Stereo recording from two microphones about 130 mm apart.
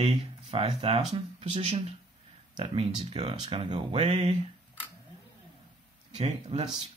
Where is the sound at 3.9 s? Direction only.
55° right (ahead or behind).